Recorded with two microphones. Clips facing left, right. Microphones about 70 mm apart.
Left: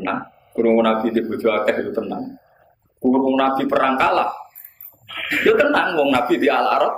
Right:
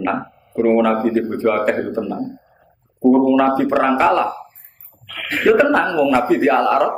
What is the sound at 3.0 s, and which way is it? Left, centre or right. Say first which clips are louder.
A man's voice: right 3 dB; centre.